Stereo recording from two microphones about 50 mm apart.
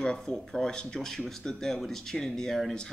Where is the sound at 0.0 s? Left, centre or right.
Centre.